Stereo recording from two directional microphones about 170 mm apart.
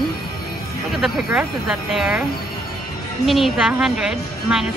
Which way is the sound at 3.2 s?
Centre (ahead or behind).